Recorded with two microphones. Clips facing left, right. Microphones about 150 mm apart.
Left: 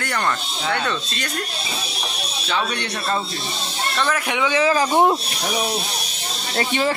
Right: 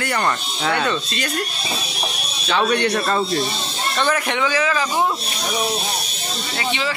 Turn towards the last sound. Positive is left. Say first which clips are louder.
# left 3 dB
turn(degrees=45)  # may be behind; listen again after turning